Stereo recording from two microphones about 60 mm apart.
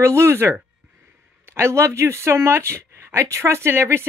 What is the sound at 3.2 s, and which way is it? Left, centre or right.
Speech, right.